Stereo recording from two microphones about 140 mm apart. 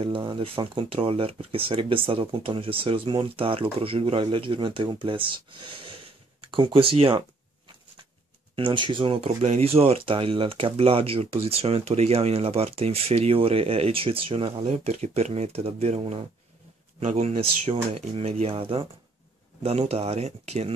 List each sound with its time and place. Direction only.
0.0 s speech: 35° right (ahead or behind)
8.5 s speech: 35° right (ahead or behind)